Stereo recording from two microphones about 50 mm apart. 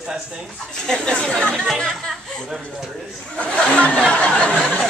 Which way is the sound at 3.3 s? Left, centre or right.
Left.